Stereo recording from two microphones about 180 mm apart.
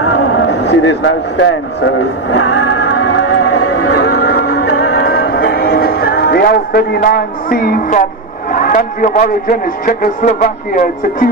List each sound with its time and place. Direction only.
0.1 s a sound: 75° left (ahead or behind)
2.3 s music: 90° left; by 8.0 s 55° left (ahead or behind)
8.5 s a man's voice: 50° left (ahead or behind)